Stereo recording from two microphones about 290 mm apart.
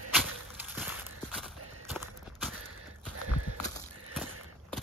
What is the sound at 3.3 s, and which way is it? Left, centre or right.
Horse, right.